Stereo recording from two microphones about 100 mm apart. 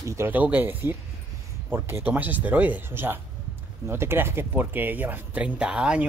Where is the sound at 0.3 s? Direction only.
20° right (ahead or behind).